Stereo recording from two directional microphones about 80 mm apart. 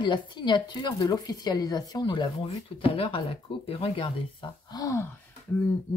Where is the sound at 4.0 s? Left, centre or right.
Left.